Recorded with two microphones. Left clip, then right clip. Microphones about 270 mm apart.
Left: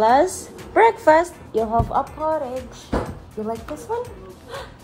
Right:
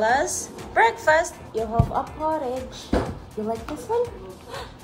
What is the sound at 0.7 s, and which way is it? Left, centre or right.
Speech, left.